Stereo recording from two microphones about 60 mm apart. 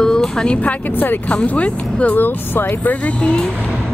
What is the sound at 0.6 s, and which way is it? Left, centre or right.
Speech, left.